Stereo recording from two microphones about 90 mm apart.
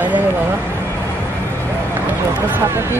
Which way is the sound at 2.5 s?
30° right (ahead or behind).